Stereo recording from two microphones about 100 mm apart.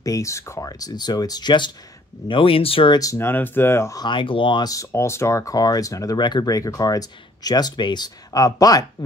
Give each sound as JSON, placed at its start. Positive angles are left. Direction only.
{"t": 0.0, "sound": "speech", "side_deg": 35}
{"t": 2.2, "sound": "speech", "side_deg": 60}
{"t": 2.9, "sound": "speech", "side_deg": 35}
{"t": 3.2, "sound": "speech", "side_deg": 20}
{"t": 4.0, "sound": "speech", "side_deg": 55}
{"t": 4.6, "sound": "speech", "side_deg": 30}